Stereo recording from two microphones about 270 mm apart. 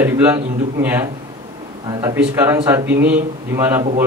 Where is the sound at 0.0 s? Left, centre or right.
Centre.